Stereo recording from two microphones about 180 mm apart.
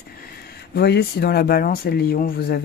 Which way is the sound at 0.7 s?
65° left (ahead or behind).